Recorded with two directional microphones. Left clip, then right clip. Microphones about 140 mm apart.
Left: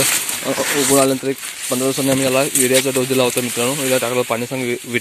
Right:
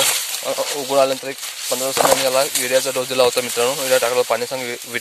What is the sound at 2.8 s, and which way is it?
Speech, 20° right (ahead or behind).